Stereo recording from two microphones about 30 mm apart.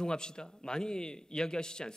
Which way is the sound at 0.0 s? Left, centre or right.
Left.